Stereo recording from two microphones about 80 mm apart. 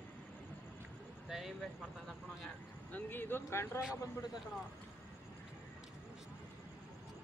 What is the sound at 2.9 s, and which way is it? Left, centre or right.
Speech, left.